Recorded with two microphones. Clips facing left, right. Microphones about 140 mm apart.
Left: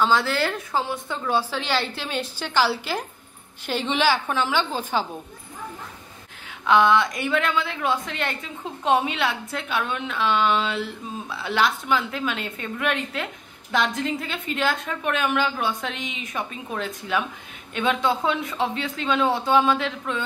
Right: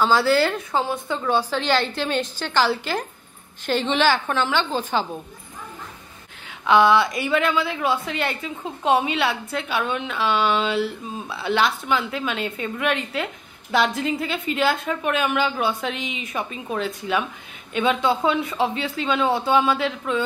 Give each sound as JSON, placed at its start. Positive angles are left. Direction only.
{"t": 0.0, "sound": "a woman's voice", "side_deg": -5}
{"t": 6.6, "sound": "a woman's voice", "side_deg": -5}